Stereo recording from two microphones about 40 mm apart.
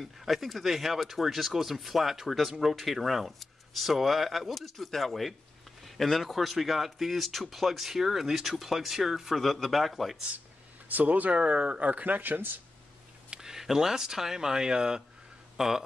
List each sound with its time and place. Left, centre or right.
0.2 s a man's voice: centre
10.9 s speech: right
12.2 s speech: right
13.3 s speech: centre